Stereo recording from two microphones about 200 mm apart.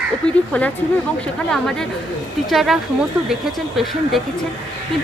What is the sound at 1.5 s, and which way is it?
Speech, centre (ahead or behind).